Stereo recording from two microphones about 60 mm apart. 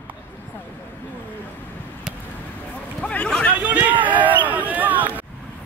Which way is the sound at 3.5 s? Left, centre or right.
Right.